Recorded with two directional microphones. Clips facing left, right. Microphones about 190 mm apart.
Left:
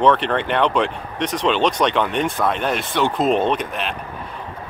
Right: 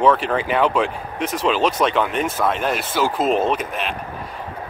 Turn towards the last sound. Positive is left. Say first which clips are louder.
# even
turn(degrees=0)  # may be behind; listen again after turning